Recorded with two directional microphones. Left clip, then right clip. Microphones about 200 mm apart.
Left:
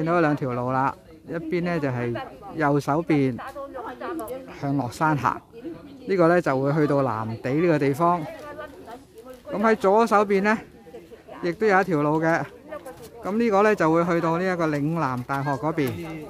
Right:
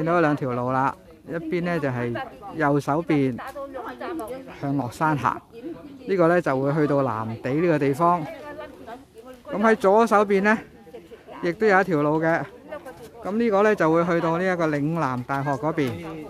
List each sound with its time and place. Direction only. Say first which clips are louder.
0.0 s speech: right 1 dB; centre (ahead or behind)
3.3 s a sound: right 1 dB; 60° right (ahead or behind)
4.6 s speech: even; 5° left (ahead or behind)
9.5 s speech: right 1 dB; 5° right (ahead or behind)